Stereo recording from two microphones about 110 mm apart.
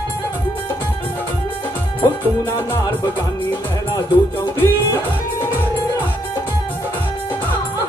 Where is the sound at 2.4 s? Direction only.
25° left (ahead or behind).